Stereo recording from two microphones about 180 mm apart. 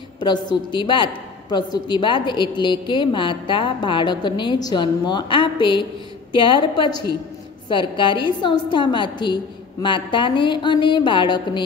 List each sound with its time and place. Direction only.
0.2 s a woman's voice: 25° left (ahead or behind)